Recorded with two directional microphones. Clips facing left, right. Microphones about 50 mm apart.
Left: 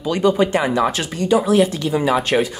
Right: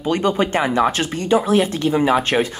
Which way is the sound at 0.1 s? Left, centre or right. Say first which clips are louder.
Left 2 dB; right.